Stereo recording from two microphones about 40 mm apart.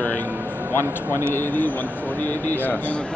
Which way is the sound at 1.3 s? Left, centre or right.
Left.